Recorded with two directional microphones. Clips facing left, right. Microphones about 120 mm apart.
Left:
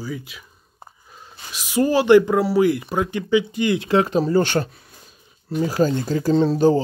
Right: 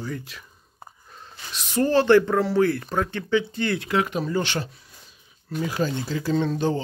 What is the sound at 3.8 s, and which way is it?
Speech, 30° left (ahead or behind).